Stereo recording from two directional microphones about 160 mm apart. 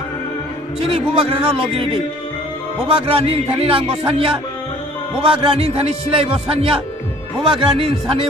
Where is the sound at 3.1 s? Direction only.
35° right (ahead or behind).